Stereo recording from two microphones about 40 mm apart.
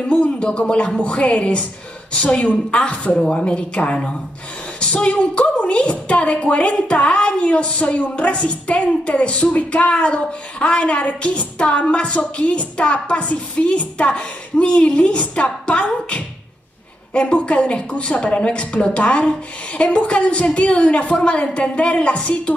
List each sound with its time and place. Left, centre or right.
0.1 s a woman's voice: left
3.2 s a woman's voice: left